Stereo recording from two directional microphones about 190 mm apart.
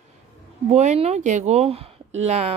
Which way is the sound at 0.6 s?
35° right (ahead or behind).